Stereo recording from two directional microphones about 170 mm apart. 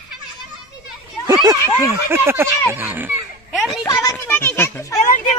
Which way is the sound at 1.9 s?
15° right (ahead or behind).